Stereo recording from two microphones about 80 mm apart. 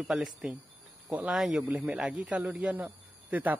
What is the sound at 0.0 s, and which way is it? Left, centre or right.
Speech, centre.